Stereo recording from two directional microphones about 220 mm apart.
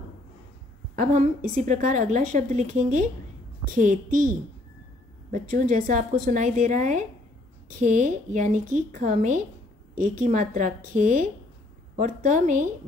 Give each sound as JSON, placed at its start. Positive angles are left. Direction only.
{"t": 0.9, "sound": "a woman's voice", "side_deg": -35}
{"t": 5.3, "sound": "a woman's voice", "side_deg": -35}